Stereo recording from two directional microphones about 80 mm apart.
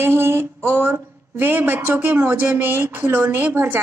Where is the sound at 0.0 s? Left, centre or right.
Right.